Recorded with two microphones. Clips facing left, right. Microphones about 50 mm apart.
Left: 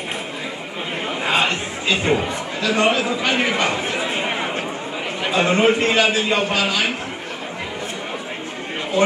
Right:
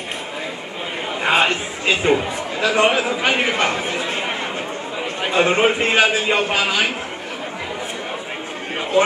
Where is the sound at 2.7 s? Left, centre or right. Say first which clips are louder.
Right 1 dB; centre.